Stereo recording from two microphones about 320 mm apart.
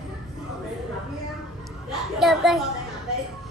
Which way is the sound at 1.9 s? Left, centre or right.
Centre.